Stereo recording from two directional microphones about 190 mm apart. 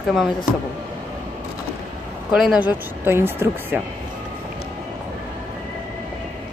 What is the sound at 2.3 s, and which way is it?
Speech, 5° right (ahead or behind).